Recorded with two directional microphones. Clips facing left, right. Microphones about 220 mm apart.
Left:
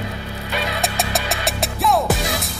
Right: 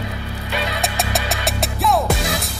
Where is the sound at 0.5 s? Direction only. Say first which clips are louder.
Even; centre (ahead or behind).